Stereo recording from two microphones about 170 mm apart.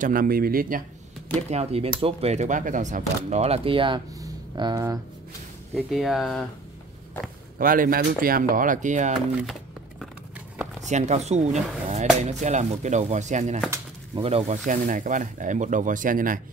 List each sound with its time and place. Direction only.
0.0 s speech: 55° right (ahead or behind)
1.5 s speech: 35° right (ahead or behind)
3.3 s speech: 40° right (ahead or behind)
5.8 s speech: centre (ahead or behind)
7.5 s speech: 55° right (ahead or behind)
9.4 s a sound: centre (ahead or behind)
10.9 s speech: 40° right (ahead or behind)
14.7 s speech: 50° right (ahead or behind)